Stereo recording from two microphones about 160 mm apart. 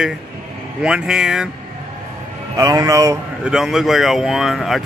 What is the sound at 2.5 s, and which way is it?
Speech, 20° right (ahead or behind).